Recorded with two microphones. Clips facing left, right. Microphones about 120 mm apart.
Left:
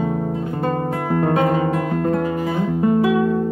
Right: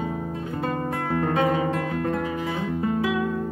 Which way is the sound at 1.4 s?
40° left (ahead or behind).